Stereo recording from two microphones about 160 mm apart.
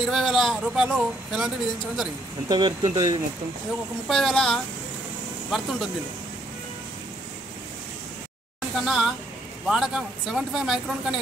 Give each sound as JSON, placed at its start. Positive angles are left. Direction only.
{"t": 0.0, "sound": "speech", "side_deg": 0}
{"t": 2.4, "sound": "speech", "side_deg": -25}
{"t": 4.1, "sound": "speech", "side_deg": 0}
{"t": 8.7, "sound": "speech", "side_deg": 0}